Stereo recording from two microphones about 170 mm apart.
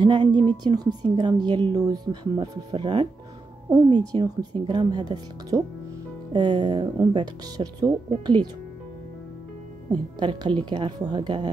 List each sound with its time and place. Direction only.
0.0 s a woman's voice: 25° right (ahead or behind)
9.8 s a woman's voice: 25° right (ahead or behind)